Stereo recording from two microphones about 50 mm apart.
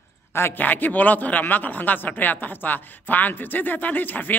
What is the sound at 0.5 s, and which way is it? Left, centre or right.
A man's voice, left.